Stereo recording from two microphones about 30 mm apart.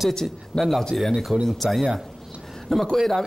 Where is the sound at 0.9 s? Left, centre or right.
Centre.